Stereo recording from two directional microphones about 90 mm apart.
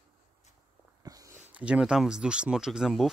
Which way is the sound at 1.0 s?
40° right (ahead or behind).